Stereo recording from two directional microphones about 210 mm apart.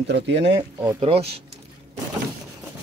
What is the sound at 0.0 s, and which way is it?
Speech, 55° right (ahead or behind).